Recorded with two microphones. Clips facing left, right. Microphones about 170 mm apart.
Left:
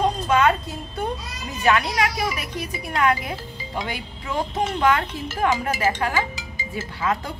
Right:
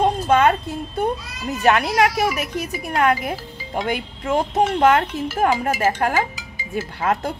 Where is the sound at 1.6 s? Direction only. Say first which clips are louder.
Right 4 dB; 50° right (ahead or behind).